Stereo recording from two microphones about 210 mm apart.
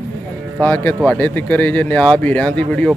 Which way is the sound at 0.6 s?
10° left (ahead or behind).